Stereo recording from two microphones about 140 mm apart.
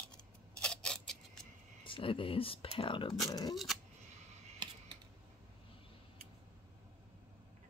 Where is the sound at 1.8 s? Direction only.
40° left (ahead or behind).